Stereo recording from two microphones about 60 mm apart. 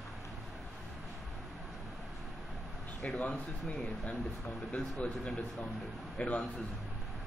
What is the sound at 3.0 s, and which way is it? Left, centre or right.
Speech, left.